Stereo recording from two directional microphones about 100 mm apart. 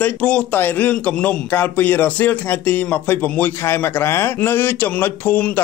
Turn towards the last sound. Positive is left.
turn(degrees=15)  # may be behind; listen again after turning